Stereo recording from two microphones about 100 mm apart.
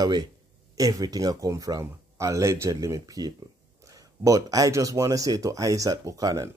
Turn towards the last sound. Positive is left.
turn(degrees=-35)  # may be behind; listen again after turning